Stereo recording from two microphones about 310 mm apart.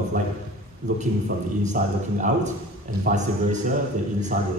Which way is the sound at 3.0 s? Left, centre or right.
Right.